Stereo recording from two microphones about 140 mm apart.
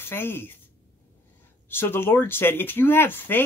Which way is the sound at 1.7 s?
15° left (ahead or behind).